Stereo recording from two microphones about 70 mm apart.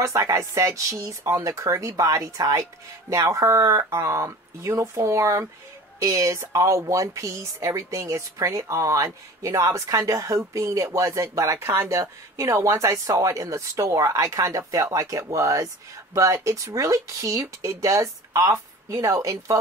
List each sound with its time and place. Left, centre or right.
0.0 s speech: right